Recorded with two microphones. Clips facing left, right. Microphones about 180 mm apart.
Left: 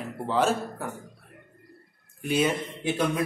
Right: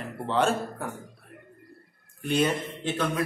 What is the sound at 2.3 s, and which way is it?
Speech, 10° left (ahead or behind).